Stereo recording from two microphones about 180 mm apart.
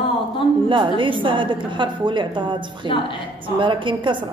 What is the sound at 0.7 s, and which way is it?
A woman's voice, 30° right (ahead or behind).